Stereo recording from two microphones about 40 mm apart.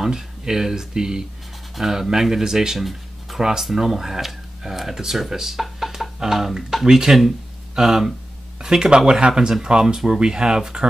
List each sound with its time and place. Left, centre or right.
0.0 s speech: centre
2.8 s a sound: centre
3.7 s speech: centre